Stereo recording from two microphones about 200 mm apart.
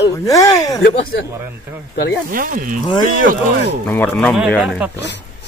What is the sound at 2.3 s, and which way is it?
Speech, 45° right (ahead or behind).